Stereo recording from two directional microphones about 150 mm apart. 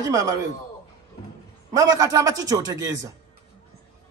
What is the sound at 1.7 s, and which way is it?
A man's voice, 25° right (ahead or behind).